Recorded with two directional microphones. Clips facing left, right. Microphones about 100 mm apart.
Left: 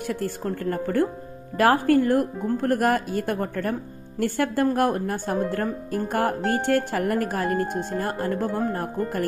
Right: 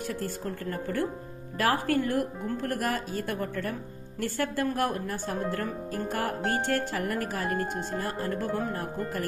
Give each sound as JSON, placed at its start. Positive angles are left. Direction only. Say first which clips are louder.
{"t": 0.1, "sound": "speech", "louder": "left 6 dB", "side_deg": 55}